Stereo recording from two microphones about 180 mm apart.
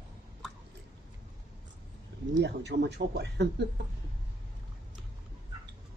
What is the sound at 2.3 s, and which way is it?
Speech, 70° right (ahead or behind).